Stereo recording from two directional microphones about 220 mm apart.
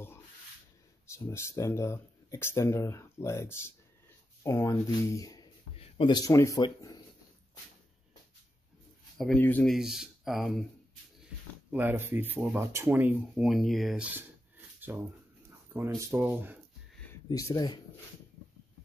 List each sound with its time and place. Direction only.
1.0 s a man's voice: 10° left (ahead or behind)
9.2 s speech: 5° left (ahead or behind)
11.7 s speech: 10° right (ahead or behind)
14.8 s a sound: 10° right (ahead or behind)
16.0 s speech: 10° right (ahead or behind)
17.3 s speech: 15° left (ahead or behind)